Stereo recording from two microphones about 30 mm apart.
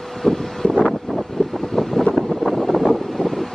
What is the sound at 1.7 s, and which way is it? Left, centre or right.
Wind noise, centre.